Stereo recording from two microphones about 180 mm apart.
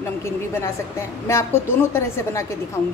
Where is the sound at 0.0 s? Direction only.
15° left (ahead or behind).